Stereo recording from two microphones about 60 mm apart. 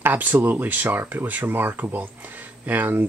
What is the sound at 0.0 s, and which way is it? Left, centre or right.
Speech, right.